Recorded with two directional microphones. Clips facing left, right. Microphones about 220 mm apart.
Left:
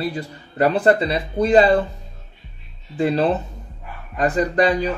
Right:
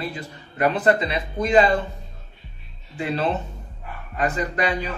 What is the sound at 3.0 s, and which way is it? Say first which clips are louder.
A man's voice: left 6 dB; 35° left (ahead or behind).